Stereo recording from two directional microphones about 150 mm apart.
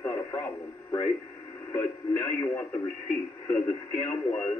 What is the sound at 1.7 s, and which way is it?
Speech, 20° left (ahead or behind).